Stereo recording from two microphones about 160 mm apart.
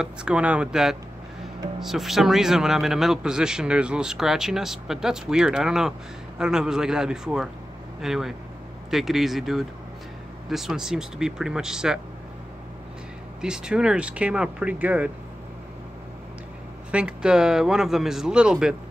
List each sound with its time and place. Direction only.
0.0 s a man's voice: 5° right (ahead or behind)
13.4 s speech: 5° right (ahead or behind)
16.9 s a man's voice: 5° right (ahead or behind)